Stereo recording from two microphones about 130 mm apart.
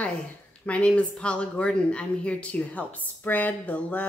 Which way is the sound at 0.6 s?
10° left (ahead or behind).